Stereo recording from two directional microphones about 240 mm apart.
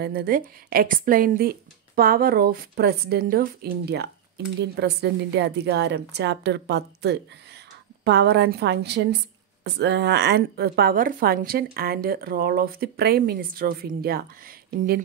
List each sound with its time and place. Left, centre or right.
0.0 s a woman's voice: right